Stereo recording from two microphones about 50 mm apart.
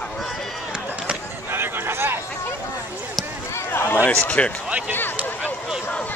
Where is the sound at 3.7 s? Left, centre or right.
Left.